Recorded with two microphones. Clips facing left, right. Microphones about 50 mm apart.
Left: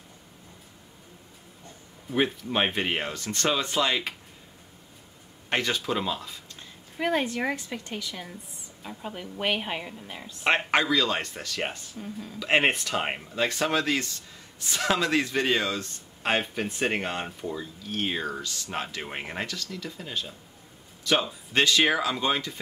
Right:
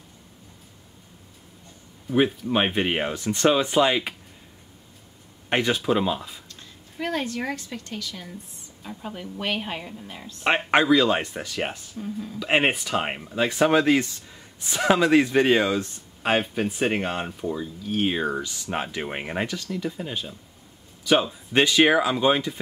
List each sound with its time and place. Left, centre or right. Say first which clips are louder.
2.0 s speech: right 5 dB; centre
5.5 s speech: right 5 dB; centre
6.5 s a woman's voice: even; centre
8.8 s a woman's voice: right 2 dB; centre
10.7 s speech: right 5 dB; centre